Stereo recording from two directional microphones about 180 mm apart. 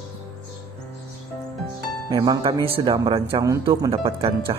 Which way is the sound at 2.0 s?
25° right (ahead or behind).